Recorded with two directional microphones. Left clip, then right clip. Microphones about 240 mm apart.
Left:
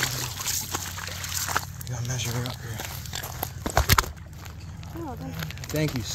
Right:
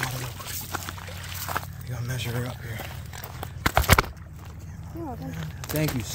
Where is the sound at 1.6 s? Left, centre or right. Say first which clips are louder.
Left 3 dB; left.